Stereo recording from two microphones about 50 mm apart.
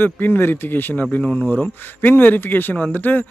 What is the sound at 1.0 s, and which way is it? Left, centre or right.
Speech, left.